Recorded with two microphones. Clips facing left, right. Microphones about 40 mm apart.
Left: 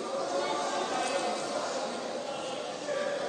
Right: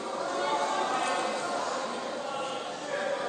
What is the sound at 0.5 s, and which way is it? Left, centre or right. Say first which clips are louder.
Chatter: right 3 dB; right.